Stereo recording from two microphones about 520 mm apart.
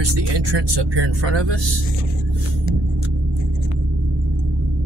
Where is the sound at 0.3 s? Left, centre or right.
Right.